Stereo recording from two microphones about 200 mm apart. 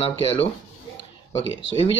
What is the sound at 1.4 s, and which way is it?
Speech, 70° left (ahead or behind).